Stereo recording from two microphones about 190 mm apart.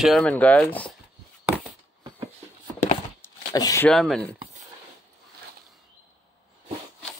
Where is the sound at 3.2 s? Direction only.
20° left (ahead or behind).